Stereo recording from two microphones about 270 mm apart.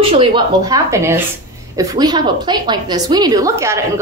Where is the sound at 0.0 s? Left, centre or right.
Right.